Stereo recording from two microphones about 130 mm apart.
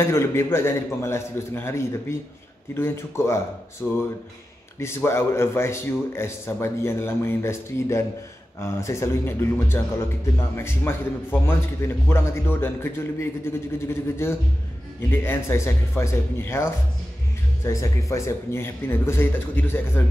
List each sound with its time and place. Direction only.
0.0 s a man's voice: 20° left (ahead or behind)
17.6 s a man's voice: 25° left (ahead or behind)